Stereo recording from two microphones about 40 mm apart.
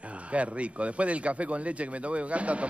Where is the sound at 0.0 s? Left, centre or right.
Right.